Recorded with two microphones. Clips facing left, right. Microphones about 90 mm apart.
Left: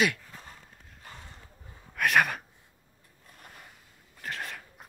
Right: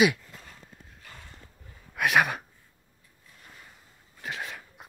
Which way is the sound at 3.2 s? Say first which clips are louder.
Left 3 dB; 55° left (ahead or behind).